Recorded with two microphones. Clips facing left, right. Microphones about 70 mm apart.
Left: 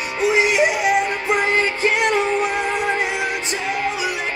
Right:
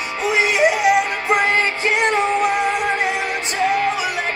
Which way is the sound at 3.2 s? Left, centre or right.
Right.